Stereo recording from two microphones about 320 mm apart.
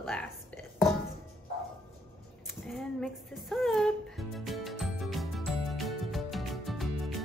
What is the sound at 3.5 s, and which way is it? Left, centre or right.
Music, centre.